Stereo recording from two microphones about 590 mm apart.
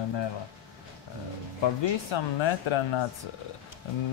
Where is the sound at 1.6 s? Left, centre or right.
Left.